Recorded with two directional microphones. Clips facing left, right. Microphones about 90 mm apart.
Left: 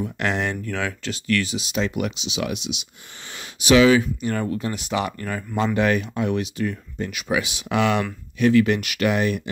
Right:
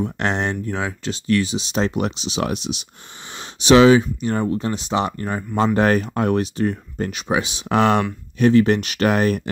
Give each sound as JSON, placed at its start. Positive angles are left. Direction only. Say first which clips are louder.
{"t": 0.0, "sound": "speech", "louder": "right 2 dB", "side_deg": -30}
{"t": 3.3, "sound": "a sound", "louder": "right 3 dB", "side_deg": -35}
{"t": 4.2, "sound": "speech", "louder": "right 3 dB", "side_deg": -25}
{"t": 5.8, "sound": "speech", "louder": "right 3 dB", "side_deg": -40}
{"t": 9.1, "sound": "speech", "louder": "right 4 dB", "side_deg": -45}